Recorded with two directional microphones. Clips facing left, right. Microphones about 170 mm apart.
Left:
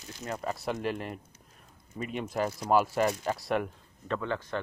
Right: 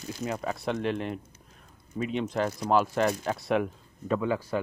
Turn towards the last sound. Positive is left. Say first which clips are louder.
# right 5 dB
turn(degrees=-10)  # may be behind; listen again after turning